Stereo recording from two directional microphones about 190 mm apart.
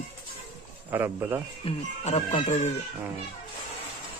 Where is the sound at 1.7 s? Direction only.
30° left (ahead or behind).